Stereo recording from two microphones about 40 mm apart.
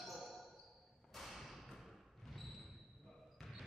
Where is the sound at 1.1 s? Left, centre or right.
Centre.